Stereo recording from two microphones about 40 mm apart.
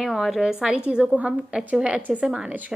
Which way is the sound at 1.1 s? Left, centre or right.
Right.